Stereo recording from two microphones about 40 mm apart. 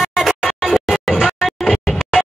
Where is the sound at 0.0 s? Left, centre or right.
Centre.